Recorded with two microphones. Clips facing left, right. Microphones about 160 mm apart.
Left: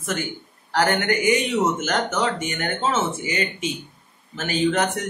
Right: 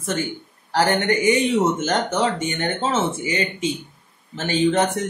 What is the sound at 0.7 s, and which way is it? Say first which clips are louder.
Speech: right 2 dB; 30° right (ahead or behind).